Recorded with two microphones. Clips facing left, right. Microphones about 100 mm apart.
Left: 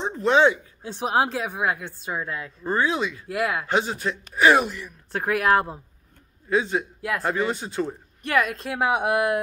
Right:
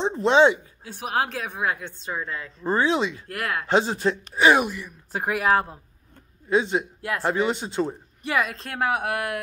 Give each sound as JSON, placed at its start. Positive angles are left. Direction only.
{"t": 0.0, "sound": "speech", "side_deg": -25}
{"t": 0.8, "sound": "a woman's voice", "side_deg": 20}
{"t": 2.6, "sound": "speech", "side_deg": -25}
{"t": 3.3, "sound": "a woman's voice", "side_deg": 15}
{"t": 3.6, "sound": "speech", "side_deg": -30}
{"t": 4.5, "sound": "a woman's voice", "side_deg": -15}
{"t": 6.5, "sound": "speech", "side_deg": -25}
{"t": 7.0, "sound": "speech", "side_deg": 0}
{"t": 7.2, "sound": "speech", "side_deg": -20}
{"t": 8.2, "sound": "a woman's voice", "side_deg": 0}
{"t": 8.9, "sound": "speech", "side_deg": 25}